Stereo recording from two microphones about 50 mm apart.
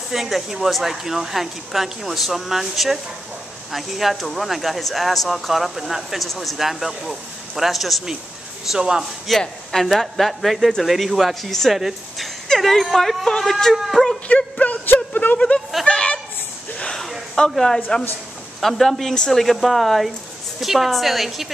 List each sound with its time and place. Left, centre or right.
0.1 s speech: centre
8.6 s speech: centre
9.3 s speech: centre
14.2 s a sound: left
15.3 s speech: left
15.8 s a sound: centre
17.4 s a man's voice: centre